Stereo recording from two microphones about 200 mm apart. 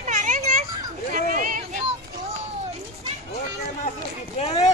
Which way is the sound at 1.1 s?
40° right (ahead or behind).